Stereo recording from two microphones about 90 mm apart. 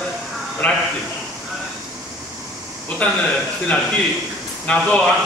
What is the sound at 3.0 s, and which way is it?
A man's voice, 15° left (ahead or behind).